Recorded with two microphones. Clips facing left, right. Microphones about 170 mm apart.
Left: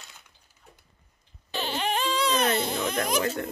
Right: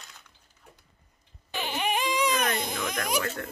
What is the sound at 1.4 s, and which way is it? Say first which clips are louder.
Music: left 1 dB; 10° right (ahead or behind).